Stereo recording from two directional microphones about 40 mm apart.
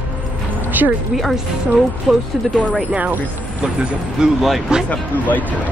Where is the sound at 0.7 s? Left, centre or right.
Right.